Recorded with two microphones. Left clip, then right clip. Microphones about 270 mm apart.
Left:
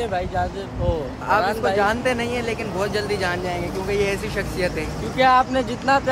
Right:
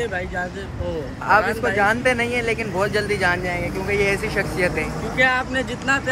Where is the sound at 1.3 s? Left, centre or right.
Centre.